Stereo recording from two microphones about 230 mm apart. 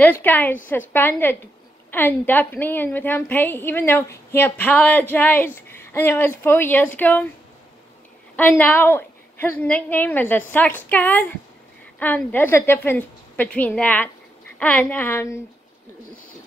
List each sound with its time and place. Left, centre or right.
0.0 s a woman's voice: centre
8.4 s a woman's voice: centre